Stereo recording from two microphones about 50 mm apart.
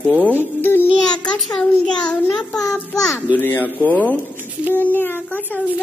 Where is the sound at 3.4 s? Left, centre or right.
Left.